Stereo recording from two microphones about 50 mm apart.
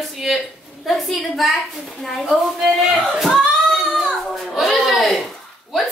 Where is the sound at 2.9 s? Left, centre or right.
Centre.